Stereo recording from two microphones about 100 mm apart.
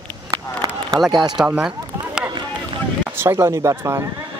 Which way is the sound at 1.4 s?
10° right (ahead or behind).